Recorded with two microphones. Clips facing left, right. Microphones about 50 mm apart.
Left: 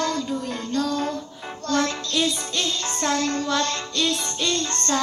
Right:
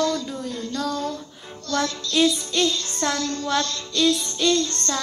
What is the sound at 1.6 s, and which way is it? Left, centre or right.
Music, left.